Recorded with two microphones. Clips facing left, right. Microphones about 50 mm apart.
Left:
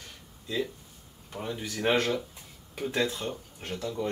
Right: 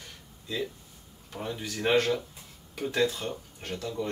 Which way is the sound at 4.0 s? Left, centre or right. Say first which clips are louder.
Left 1 dB; centre.